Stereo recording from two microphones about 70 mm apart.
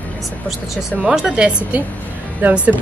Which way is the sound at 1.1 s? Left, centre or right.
Centre.